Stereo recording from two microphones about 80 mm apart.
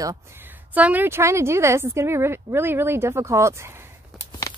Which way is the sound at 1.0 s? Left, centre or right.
Right.